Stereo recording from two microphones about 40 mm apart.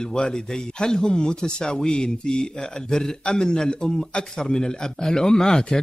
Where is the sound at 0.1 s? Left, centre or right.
Left.